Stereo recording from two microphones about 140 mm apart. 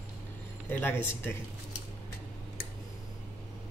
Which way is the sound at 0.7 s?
15° left (ahead or behind).